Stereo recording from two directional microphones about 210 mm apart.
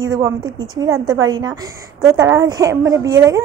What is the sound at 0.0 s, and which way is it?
A woman's voice, 15° right (ahead or behind).